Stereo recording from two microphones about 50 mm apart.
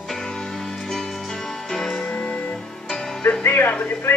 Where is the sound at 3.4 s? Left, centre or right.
Left.